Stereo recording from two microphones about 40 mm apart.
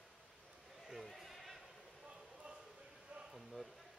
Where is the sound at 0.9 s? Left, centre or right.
Centre.